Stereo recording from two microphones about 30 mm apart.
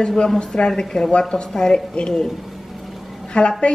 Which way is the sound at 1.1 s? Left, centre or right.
Left.